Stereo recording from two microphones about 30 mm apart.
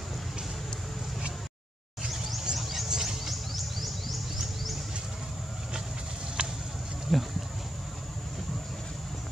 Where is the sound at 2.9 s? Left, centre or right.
Centre.